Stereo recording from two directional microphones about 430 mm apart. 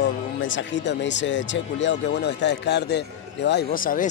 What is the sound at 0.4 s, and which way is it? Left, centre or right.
Speech, left.